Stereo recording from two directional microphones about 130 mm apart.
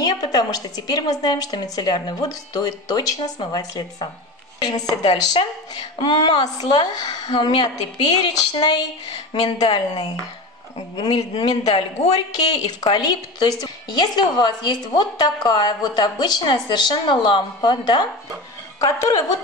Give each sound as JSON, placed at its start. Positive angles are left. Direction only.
{"t": 0.2, "sound": "a woman's voice", "side_deg": 30}